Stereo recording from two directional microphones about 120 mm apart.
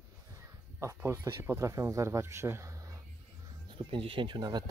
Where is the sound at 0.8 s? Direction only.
25° right (ahead or behind).